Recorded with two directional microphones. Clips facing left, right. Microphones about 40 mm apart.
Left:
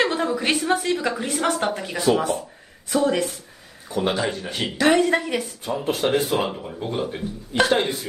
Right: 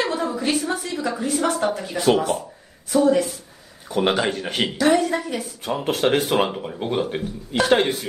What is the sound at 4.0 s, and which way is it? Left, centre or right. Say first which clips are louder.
Speech: right 3 dB; right.